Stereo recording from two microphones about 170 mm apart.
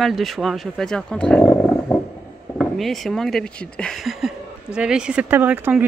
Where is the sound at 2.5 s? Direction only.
Centre (ahead or behind).